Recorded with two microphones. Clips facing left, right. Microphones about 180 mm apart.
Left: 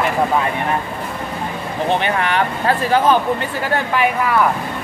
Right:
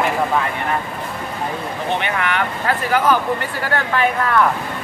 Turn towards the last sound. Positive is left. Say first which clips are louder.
# left 1 dB
turn(degrees=10)  # may be behind; listen again after turning